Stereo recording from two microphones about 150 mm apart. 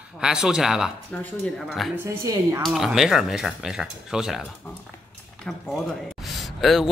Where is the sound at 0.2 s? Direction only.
5° right (ahead or behind).